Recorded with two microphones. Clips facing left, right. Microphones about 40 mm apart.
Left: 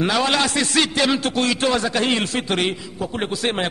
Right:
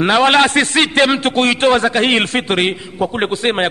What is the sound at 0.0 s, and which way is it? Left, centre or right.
A man's voice, right.